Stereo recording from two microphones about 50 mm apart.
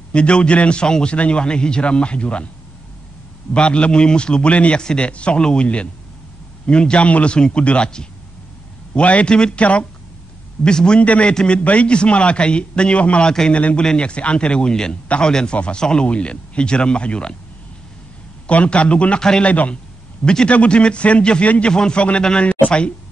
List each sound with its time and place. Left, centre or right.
0.1 s a man's voice: left
3.5 s a man's voice: left
13.3 s a man's voice: centre
13.6 s a man's voice: left
18.5 s a man's voice: left
19.5 s a man's voice: left